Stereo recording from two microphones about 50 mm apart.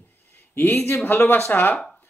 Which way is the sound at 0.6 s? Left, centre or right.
Left.